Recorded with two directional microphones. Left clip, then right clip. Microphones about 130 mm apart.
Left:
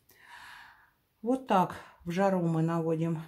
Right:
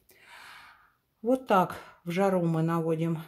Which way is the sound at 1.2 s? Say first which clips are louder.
Right 3 dB; 20° right (ahead or behind).